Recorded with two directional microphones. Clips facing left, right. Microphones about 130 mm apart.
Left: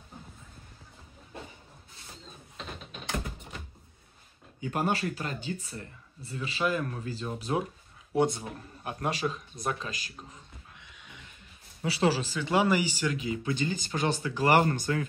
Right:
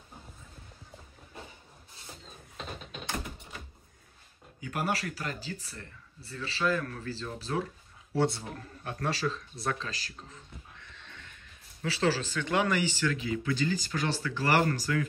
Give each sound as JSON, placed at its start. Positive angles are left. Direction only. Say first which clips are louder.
{"t": 4.6, "sound": "a man's voice", "louder": "left 3 dB", "side_deg": 25}
{"t": 10.8, "sound": "a sound", "louder": "right 1 dB", "side_deg": 10}
{"t": 11.8, "sound": "a man's voice", "louder": "left 2 dB", "side_deg": 15}